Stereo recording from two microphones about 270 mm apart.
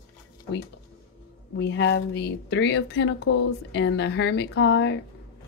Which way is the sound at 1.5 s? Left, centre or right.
Left.